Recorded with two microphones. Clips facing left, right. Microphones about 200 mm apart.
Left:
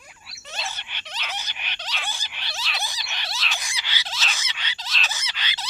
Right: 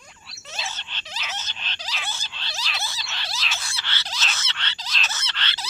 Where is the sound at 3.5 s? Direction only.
15° left (ahead or behind).